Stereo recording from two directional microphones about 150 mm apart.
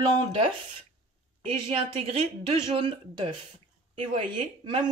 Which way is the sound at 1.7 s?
40° right (ahead or behind).